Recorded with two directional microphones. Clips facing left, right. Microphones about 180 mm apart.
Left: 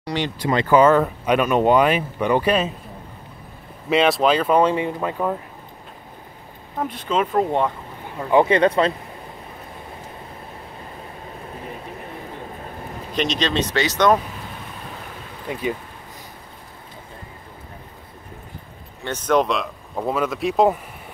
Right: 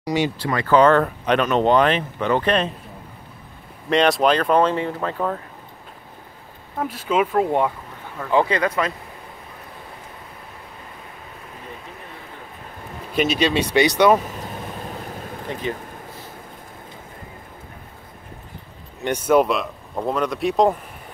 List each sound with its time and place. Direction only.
0.0 s speech: 10° right (ahead or behind)
0.4 s speech: 20° left (ahead or behind)
0.7 s speech: 5° left (ahead or behind)
3.9 s speech: centre (ahead or behind)
6.8 s speech: 5° right (ahead or behind)
8.2 s speech: 20° left (ahead or behind)
13.1 s speech: 10° right (ahead or behind)
15.5 s speech: 10° left (ahead or behind)
19.0 s speech: 10° right (ahead or behind)